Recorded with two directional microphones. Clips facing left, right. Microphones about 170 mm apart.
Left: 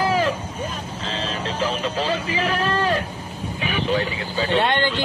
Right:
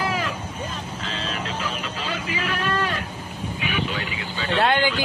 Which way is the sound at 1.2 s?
35° left (ahead or behind).